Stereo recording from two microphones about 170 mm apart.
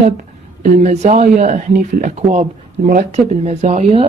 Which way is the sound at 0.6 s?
45° right (ahead or behind).